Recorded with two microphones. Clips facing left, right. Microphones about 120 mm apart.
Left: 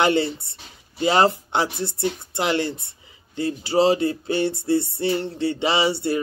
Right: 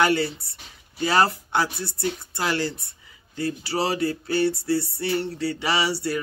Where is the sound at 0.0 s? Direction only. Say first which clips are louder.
Left 2 dB; 25° left (ahead or behind).